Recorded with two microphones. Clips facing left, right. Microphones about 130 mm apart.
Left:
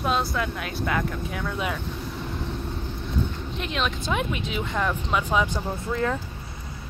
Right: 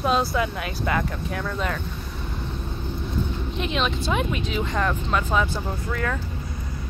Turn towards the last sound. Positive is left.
turn(degrees=25)  # may be behind; listen again after turning